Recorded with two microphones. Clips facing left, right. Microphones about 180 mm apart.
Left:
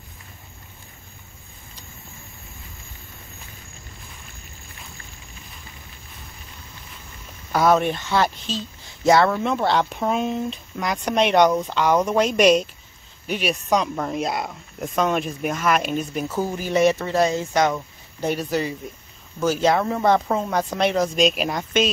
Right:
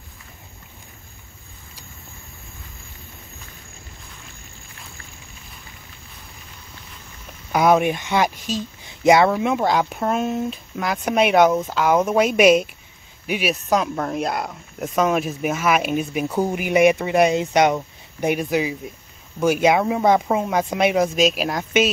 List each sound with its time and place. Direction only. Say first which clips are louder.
7.5 s speech: right 2 dB; 15° right (ahead or behind)
16.3 s speech: right 3 dB; 20° right (ahead or behind); by 21.8 s centre (ahead or behind)